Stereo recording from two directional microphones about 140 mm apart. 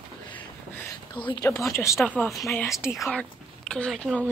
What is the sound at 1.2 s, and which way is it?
Speech, 35° left (ahead or behind).